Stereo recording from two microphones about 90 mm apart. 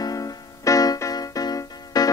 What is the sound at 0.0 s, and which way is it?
Music, 40° left (ahead or behind).